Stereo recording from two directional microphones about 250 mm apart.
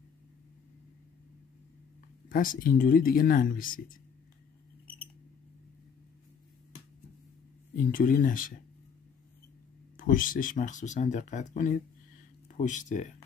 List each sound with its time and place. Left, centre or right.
2.2 s speech: left
7.7 s speech: left
9.9 s speech: left